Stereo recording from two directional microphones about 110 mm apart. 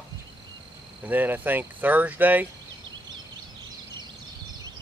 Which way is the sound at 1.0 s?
15° right (ahead or behind).